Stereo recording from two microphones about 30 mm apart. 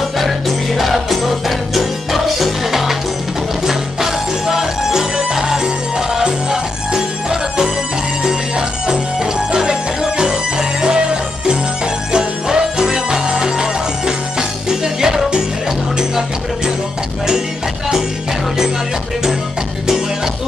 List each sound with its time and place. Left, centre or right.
0.2 s music: centre; by 16.7 s right